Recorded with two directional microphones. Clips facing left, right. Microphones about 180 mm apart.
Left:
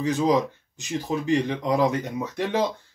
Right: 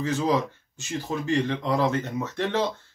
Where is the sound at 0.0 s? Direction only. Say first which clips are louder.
Left 3 dB; 15° left (ahead or behind).